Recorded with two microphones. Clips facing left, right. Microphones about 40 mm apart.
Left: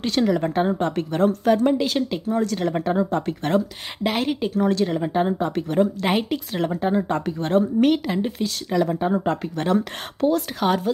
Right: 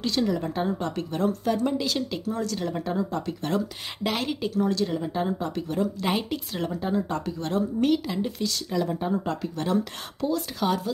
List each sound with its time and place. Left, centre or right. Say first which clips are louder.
0.2 s a woman's voice: left 7 dB; left
0.6 s speech: left 6 dB; left
1.7 s speech: left 6 dB; left
2.8 s speech: left 6 dB; left
4.0 s speech: left 5 dB; centre
4.6 s speech: left 4 dB; left
6.0 s speech: left 5 dB; left
6.6 s speech: left 5 dB; left
8.2 s speech: left 3 dB; left
8.6 s speech: left 7 dB; left